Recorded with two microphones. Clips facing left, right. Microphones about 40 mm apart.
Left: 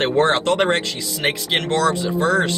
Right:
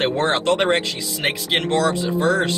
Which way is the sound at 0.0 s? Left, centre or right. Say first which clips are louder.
Left 2 dB; centre.